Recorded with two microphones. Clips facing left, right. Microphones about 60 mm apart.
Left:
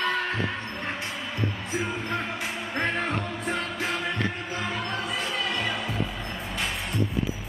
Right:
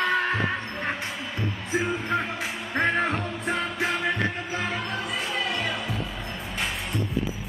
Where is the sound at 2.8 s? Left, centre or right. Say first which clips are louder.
Right 5 dB; right.